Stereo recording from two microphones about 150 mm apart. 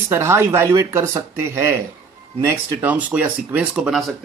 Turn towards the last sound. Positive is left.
turn(degrees=-5)  # may be behind; listen again after turning